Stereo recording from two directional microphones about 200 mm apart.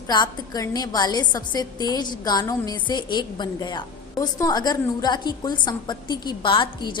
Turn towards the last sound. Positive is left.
turn(degrees=25)  # may be behind; listen again after turning